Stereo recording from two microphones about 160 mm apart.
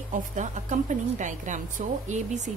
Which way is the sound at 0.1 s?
50° right (ahead or behind).